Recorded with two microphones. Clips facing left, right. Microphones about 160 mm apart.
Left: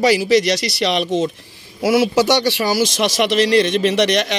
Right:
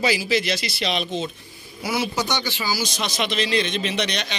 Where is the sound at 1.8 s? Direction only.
90° left.